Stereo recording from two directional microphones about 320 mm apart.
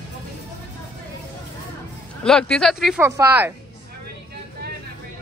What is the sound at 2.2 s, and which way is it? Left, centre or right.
Speech, centre.